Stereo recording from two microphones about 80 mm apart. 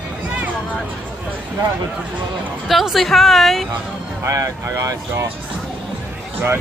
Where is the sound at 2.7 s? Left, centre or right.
Centre.